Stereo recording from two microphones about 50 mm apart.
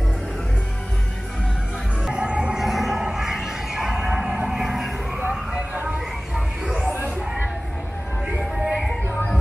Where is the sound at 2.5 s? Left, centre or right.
Centre.